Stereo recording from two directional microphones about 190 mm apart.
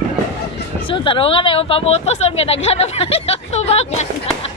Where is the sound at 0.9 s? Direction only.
25° left (ahead or behind).